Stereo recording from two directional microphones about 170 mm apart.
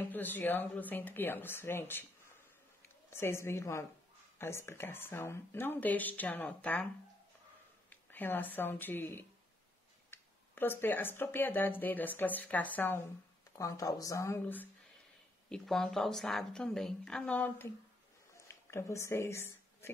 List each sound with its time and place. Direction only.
0.1 s speech: 10° left (ahead or behind)
3.1 s speech: 15° left (ahead or behind)
7.9 s a woman's voice: 10° left (ahead or behind)